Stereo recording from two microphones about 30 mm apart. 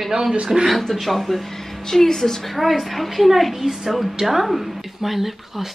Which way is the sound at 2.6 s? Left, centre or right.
Centre.